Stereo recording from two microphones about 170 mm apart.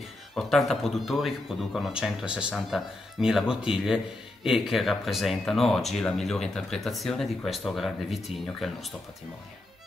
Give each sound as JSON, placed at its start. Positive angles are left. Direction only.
{"t": 0.3, "sound": "speech", "side_deg": 0}